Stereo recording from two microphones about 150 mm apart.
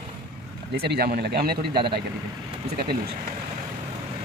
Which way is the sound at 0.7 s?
90° right.